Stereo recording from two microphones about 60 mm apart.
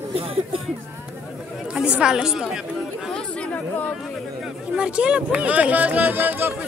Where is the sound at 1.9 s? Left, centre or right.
Centre.